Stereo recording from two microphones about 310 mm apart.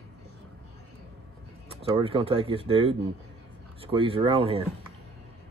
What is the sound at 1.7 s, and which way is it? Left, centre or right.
Speech, centre.